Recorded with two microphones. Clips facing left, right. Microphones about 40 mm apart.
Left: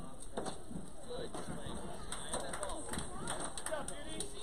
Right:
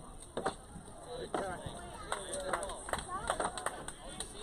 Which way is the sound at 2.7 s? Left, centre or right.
Right.